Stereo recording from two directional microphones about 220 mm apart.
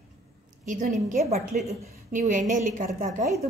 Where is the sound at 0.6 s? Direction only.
35° right (ahead or behind).